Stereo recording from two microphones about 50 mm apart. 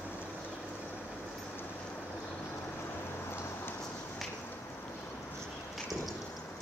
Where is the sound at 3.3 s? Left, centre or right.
Left.